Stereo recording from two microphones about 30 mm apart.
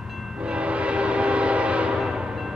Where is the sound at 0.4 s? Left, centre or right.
Right.